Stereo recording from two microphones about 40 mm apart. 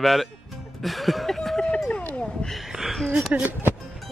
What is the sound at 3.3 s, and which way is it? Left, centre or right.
Speech, right.